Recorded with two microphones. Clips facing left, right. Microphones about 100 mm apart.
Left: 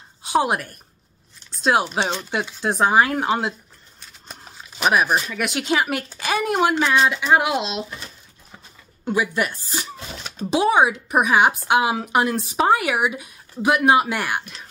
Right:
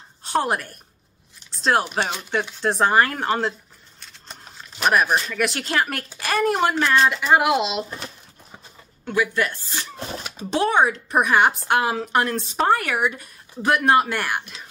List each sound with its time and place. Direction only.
0.2 s speech: 5° left (ahead or behind)
1.5 s a sound: 5° left (ahead or behind)
2.6 s speech: 5° left (ahead or behind)
4.0 s a sound: 5° left (ahead or behind)
6.0 s speech: centre (ahead or behind)
9.0 s a woman's voice: 15° left (ahead or behind)